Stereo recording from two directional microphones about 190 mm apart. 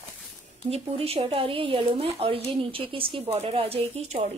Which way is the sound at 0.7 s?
30° right (ahead or behind).